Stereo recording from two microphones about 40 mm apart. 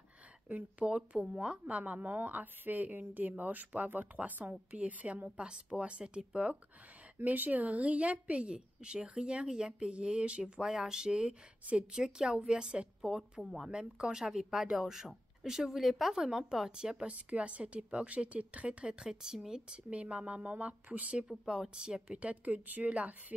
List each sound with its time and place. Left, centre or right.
0.5 s a woman's voice: right
0.8 s speech: right
2.0 s a woman's voice: right
5.5 s speech: right
7.2 s a woman's voice: right; by 13.7 s centre
13.7 s speech: right
19.9 s a woman's voice: right
21.5 s a woman's voice: centre